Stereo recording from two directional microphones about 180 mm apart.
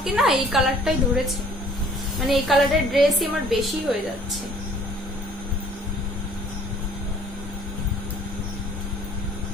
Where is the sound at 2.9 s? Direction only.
Centre (ahead or behind).